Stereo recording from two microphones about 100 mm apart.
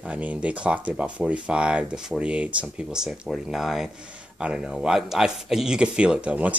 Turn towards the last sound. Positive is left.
turn(degrees=-15)  # may be behind; listen again after turning